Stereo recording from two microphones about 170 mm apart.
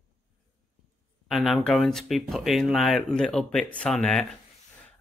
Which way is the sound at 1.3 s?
Centre (ahead or behind).